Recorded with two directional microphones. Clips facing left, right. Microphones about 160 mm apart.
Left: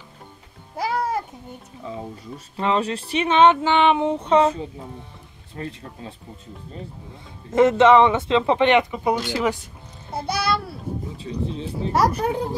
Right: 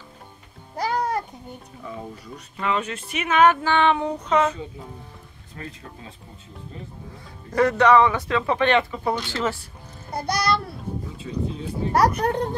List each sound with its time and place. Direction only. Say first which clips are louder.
0.7 s music: even; 5° left (ahead or behind)
2.5 s female singing: left 4 dB; 30° left (ahead or behind)
5.6 s speech: left 5 dB; 35° left (ahead or behind)
7.5 s female singing: left 3 dB; 20° left (ahead or behind)
9.3 s speech: left 3 dB; 15° left (ahead or behind)
10.1 s a child's voice: even; 5° left (ahead or behind)
11.1 s female singing: right 1 dB; 30° left (ahead or behind)
12.2 s a child's voice: even; 5° left (ahead or behind)